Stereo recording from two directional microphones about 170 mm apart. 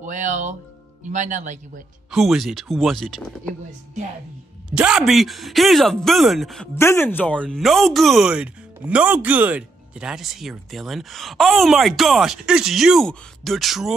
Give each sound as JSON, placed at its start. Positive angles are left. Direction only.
{"t": 0.0, "sound": "speech", "side_deg": -50}
{"t": 2.0, "sound": "speech", "side_deg": 0}
{"t": 4.6, "sound": "speech", "side_deg": -5}
{"t": 6.7, "sound": "speech", "side_deg": 15}